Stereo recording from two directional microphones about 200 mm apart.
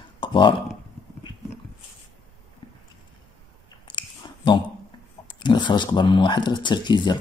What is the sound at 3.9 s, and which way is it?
Chewing, 25° left (ahead or behind).